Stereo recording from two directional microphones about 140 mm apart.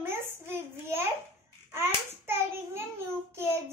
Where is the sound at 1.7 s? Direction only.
15° right (ahead or behind).